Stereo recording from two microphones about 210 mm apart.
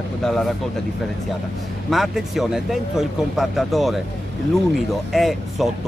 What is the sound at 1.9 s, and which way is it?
Speech, centre (ahead or behind).